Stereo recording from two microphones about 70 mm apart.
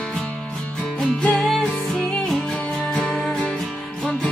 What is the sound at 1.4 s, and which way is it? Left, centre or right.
Music, centre.